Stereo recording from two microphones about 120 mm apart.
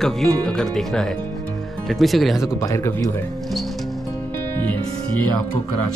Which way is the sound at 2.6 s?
25° left (ahead or behind).